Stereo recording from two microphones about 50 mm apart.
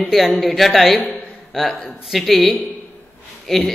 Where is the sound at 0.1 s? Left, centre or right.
Centre.